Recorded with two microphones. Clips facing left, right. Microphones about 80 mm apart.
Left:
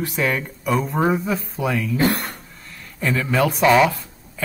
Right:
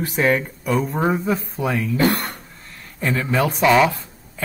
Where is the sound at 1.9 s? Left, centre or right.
Right.